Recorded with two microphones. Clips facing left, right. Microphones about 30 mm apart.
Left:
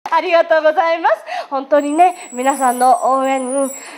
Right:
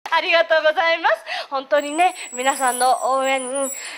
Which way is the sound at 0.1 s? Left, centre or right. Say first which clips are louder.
Left 4 dB; right.